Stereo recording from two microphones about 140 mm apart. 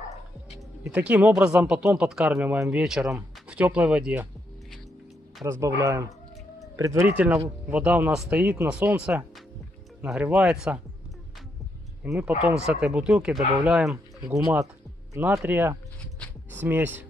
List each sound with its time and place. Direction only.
0.8 s speech: 10° right (ahead or behind)
5.4 s speech: 20° right (ahead or behind); by 10.8 s 5° right (ahead or behind)
12.0 s speech: 10° right (ahead or behind)
14.4 s speech: 20° right (ahead or behind)